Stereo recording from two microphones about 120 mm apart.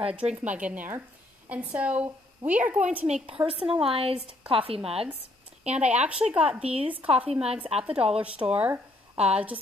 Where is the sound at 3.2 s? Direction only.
50° right (ahead or behind).